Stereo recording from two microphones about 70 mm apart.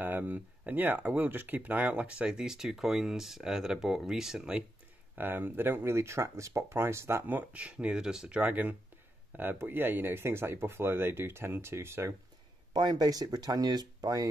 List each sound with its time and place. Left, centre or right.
0.0 s speech: right; by 4.6 s centre
5.1 s speech: right
7.2 s speech: right
12.7 s speech: right